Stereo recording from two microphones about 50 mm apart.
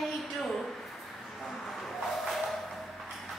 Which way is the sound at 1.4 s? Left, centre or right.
Centre.